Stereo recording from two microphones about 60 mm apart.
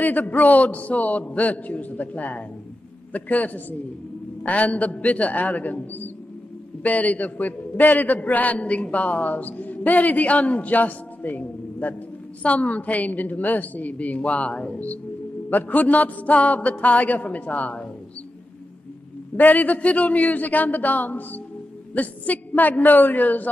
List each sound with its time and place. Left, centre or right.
0.0 s a man's voice: left
19.3 s a man's voice: left